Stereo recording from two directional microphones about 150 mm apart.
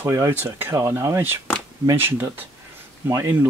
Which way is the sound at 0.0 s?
15° right (ahead or behind).